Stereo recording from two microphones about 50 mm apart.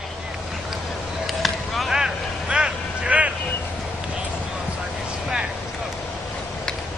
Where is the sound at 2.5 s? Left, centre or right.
Right.